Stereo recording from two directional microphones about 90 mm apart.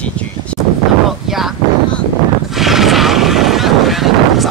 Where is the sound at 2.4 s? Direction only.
5° right (ahead or behind).